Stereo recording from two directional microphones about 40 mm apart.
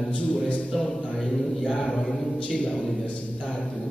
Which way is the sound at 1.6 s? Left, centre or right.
Left.